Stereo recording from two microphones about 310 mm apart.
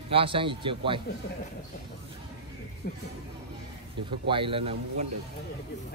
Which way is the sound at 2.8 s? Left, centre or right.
Left.